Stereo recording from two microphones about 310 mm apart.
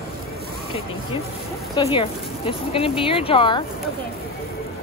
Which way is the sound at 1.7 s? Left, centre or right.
Centre.